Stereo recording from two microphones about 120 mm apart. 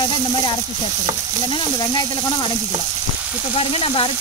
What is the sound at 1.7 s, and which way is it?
Frying, 35° left (ahead or behind).